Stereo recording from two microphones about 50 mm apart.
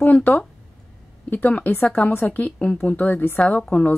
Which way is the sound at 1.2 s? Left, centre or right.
Left.